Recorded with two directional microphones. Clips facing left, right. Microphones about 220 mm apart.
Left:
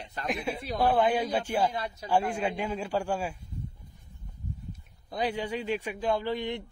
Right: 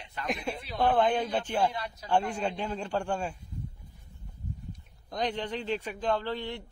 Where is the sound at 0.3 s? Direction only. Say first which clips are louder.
Left 2 dB; centre (ahead or behind).